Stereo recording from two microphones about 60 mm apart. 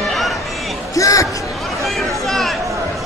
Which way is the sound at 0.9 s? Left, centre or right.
Left.